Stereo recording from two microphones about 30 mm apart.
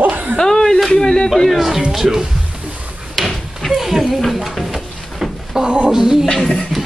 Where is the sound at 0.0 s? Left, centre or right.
Right.